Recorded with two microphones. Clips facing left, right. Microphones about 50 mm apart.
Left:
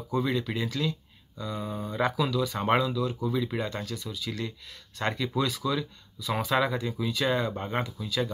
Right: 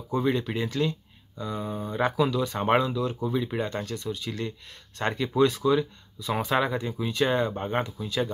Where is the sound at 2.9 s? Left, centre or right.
Right.